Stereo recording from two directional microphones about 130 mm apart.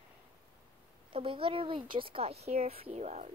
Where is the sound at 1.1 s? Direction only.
45° right (ahead or behind).